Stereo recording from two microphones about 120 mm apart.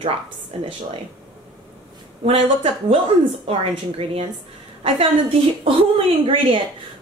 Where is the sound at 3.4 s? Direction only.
55° right (ahead or behind).